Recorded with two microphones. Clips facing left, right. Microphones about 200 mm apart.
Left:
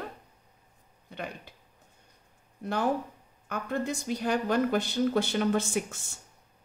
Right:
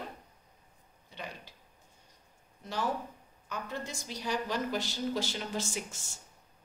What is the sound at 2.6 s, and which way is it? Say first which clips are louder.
A woman's voice: left 6 dB; 55° left (ahead or behind).